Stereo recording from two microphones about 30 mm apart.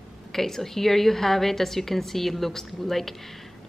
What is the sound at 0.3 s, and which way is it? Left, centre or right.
Speech, centre.